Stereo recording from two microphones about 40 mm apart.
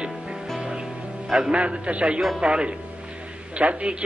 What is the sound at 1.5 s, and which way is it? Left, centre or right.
A man's voice, right.